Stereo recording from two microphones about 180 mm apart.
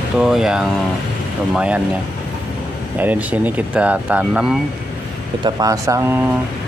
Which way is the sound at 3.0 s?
10° right (ahead or behind).